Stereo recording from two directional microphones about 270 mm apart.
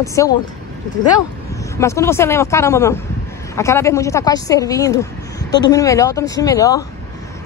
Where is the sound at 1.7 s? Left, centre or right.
Centre.